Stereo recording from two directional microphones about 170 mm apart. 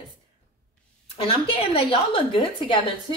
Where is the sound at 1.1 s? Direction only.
35° left (ahead or behind).